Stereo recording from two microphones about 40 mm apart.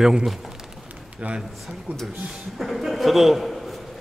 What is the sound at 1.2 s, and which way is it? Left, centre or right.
Speech, right.